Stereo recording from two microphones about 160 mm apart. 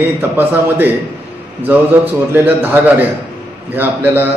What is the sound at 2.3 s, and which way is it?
A man's voice, 10° right (ahead or behind).